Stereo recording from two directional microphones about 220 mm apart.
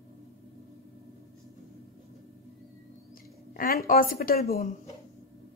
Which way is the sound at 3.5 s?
40° left (ahead or behind).